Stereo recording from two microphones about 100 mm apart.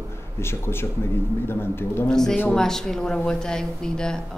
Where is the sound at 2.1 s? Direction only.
5° left (ahead or behind).